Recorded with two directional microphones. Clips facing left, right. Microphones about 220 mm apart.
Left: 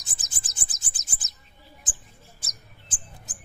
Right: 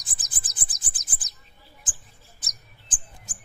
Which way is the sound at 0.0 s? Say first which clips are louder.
Even; 25° left (ahead or behind).